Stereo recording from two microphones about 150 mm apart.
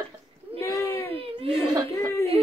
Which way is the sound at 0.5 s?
15° left (ahead or behind).